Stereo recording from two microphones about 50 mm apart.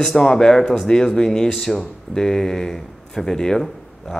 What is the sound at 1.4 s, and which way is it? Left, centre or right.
Speech, centre.